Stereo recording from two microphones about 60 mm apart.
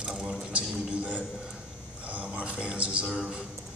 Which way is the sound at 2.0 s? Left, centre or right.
Right.